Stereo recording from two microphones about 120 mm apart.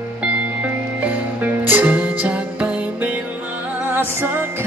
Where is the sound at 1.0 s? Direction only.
15° right (ahead or behind).